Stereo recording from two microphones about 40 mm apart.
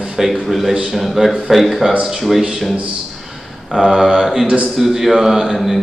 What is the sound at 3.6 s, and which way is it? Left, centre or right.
A man's voice, centre.